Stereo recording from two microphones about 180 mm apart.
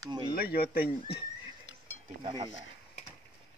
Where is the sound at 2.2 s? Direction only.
25° right (ahead or behind).